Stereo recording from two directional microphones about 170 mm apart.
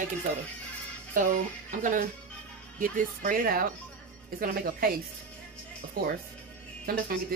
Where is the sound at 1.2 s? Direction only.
50° right (ahead or behind).